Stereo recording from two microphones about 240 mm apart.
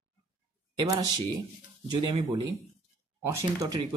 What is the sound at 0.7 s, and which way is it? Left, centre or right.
Speech, centre.